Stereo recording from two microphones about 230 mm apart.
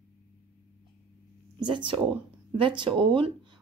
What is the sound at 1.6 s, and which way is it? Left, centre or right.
Speech, centre.